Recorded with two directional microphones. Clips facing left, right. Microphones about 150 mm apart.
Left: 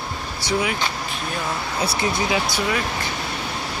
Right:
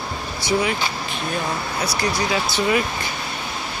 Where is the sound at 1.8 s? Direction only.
25° left (ahead or behind).